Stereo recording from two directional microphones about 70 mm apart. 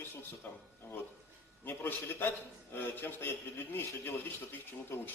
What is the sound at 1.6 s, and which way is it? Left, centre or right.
A man's voice, left.